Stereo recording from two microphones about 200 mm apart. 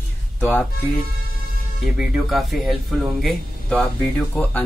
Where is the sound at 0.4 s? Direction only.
10° left (ahead or behind).